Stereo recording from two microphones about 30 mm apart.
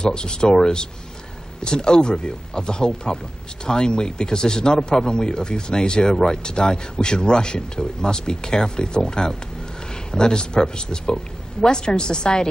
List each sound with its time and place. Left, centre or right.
0.0 s a man's voice: left